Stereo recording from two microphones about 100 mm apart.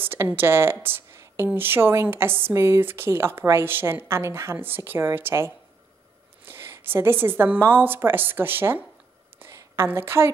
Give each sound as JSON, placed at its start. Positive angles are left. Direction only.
{"t": 0.0, "sound": "a woman's voice", "side_deg": -20}
{"t": 9.4, "sound": "a sound", "side_deg": -30}
{"t": 9.8, "sound": "a woman's voice", "side_deg": -25}